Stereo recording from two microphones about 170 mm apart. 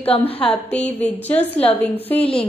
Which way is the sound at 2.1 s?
35° left (ahead or behind).